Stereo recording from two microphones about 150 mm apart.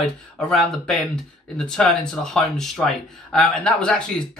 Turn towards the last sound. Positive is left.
turn(degrees=5)  # may be behind; listen again after turning